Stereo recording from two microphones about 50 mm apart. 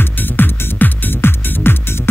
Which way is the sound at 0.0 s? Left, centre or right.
Left.